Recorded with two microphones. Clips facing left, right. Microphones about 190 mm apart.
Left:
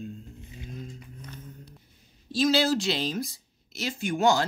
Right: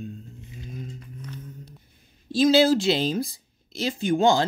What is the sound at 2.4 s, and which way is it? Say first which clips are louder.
Speech: right 6 dB; 30° right (ahead or behind).